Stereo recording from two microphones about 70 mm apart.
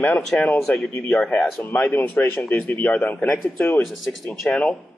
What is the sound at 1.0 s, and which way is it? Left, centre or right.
Speech, left.